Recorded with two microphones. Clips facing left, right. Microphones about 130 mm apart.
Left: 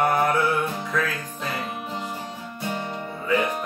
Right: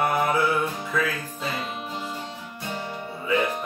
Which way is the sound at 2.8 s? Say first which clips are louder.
Left 2 dB; 20° left (ahead or behind).